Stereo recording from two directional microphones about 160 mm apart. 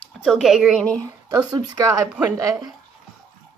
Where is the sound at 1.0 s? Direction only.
20° right (ahead or behind).